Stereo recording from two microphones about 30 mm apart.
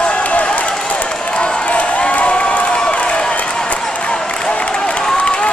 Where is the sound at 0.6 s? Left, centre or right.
Left.